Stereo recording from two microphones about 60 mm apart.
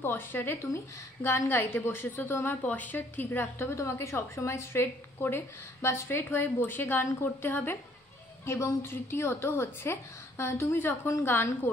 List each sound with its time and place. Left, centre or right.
0.0 s a woman's voice: left
2.6 s a woman's voice: left
6.0 s a woman's voice: left
8.5 s a woman's voice: left